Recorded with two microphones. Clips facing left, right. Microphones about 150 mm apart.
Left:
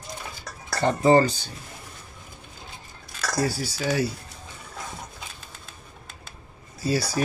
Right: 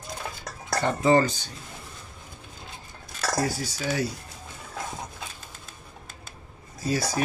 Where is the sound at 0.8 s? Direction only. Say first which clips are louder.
Left 3 dB; 35° left (ahead or behind).